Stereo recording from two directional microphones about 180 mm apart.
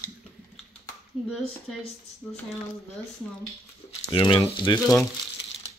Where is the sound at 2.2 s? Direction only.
Centre (ahead or behind).